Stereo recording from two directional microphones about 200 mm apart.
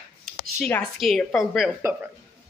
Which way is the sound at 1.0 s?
Centre (ahead or behind).